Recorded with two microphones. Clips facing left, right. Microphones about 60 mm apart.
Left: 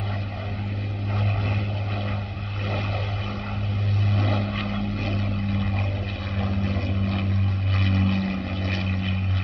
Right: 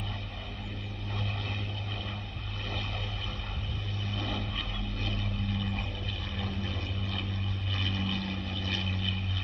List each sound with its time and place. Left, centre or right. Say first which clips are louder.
4.1 s vehicle: left 8 dB; left